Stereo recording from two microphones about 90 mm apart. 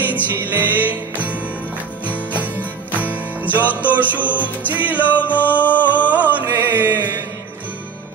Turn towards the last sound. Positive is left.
turn(degrees=-20)  # may be behind; listen again after turning